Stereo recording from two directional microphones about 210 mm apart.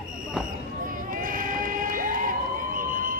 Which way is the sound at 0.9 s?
40° right (ahead or behind).